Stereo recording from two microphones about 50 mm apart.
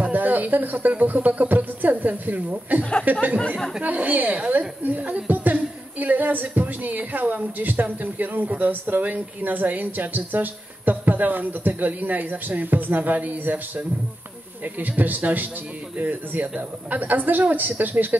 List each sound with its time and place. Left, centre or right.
0.0 s music: right
2.8 s speech: left
3.1 s speech: right